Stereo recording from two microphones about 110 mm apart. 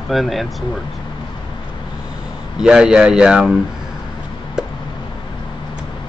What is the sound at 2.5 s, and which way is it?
Speech, 5° right (ahead or behind).